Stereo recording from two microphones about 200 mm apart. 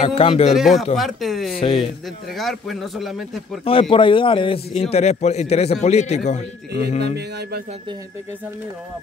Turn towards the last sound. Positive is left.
turn(degrees=35)  # may be behind; listen again after turning